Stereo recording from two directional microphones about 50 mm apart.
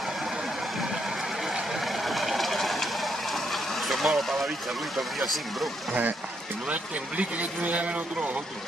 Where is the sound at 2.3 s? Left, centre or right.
Centre.